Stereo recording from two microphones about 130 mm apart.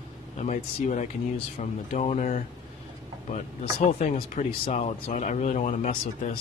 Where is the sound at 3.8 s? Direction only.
60° left (ahead or behind).